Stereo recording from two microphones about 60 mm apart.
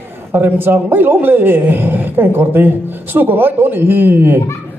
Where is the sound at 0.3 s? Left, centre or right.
Right.